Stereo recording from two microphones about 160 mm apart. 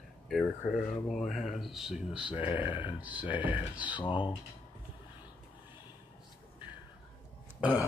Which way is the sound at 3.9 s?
30° left (ahead or behind).